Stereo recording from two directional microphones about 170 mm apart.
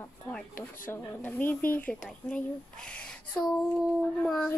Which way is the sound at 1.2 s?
10° left (ahead or behind).